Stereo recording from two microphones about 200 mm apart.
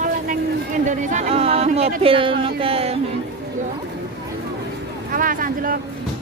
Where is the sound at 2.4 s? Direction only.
30° right (ahead or behind).